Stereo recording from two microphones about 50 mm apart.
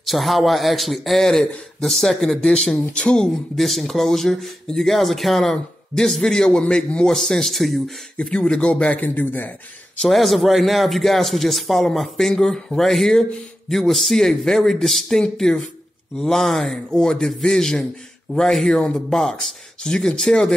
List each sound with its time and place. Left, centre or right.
0.0 s a man's voice: centre
3.5 s a man's voice: centre
8.2 s speech: centre
9.0 s a man's voice: left
10.0 s a man's voice: centre